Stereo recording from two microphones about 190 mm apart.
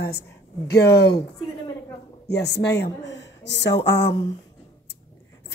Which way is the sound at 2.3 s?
60° left (ahead or behind).